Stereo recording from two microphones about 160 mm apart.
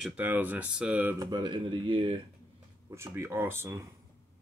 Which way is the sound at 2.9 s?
15° right (ahead or behind).